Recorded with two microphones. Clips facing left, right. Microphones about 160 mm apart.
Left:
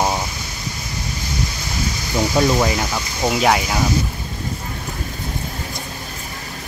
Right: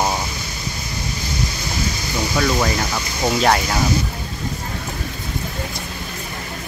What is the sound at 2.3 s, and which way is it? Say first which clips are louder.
Speech: left 2 dB; 20° left (ahead or behind).